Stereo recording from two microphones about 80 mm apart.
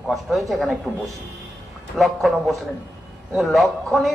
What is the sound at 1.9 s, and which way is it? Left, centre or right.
Speech, centre.